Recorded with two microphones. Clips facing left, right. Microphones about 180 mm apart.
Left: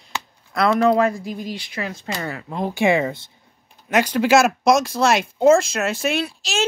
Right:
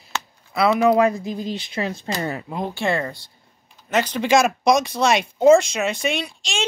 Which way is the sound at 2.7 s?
15° left (ahead or behind).